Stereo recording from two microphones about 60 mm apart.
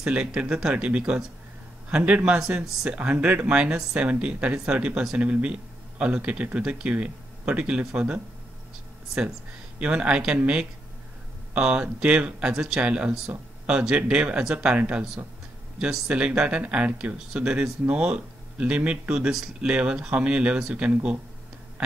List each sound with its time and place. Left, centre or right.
0.0 s speech: centre
2.4 s speech: centre
2.9 s speech: right
19.3 s speech: centre
19.7 s speech: centre